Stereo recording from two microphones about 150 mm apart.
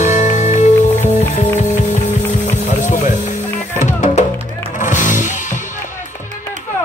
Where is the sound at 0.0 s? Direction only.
55° left (ahead or behind).